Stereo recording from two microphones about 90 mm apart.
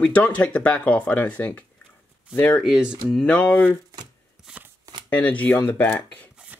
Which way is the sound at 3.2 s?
15° left (ahead or behind).